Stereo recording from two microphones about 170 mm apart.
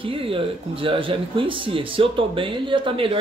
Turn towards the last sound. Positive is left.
turn(degrees=-30)  # may be behind; listen again after turning